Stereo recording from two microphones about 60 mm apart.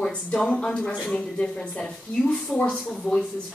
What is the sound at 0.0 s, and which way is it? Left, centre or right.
A woman's voice, centre.